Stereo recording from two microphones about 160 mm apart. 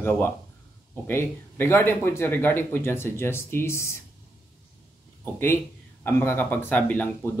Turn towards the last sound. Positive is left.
turn(degrees=10)  # may be behind; listen again after turning